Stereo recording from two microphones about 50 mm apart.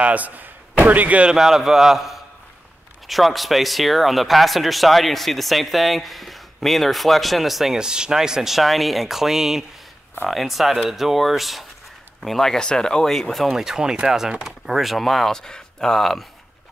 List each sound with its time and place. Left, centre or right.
0.0 s speech: right
1.3 s speech: centre
7.7 s speech: centre
13.5 s speech: centre